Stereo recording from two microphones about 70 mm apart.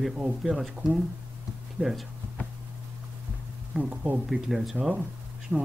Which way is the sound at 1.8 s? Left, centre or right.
Right.